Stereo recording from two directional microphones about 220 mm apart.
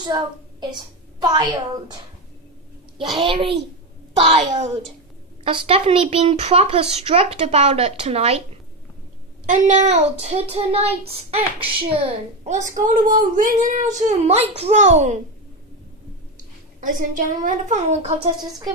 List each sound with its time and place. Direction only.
0.0 s a child's voice: 20° right (ahead or behind)
3.3 s a woman's voice: 25° right (ahead or behind)
4.3 s child singing: 30° right (ahead or behind)
5.4 s a woman's voice: 25° right (ahead or behind)
9.5 s child singing: 35° right (ahead or behind)
16.8 s child singing: 35° right (ahead or behind)